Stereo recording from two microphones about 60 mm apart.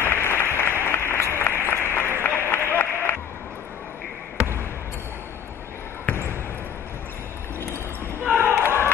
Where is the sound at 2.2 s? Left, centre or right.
Left.